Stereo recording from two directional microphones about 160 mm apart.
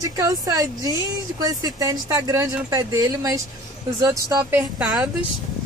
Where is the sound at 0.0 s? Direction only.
25° right (ahead or behind).